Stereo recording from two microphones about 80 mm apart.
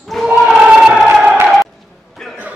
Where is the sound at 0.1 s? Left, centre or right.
Centre.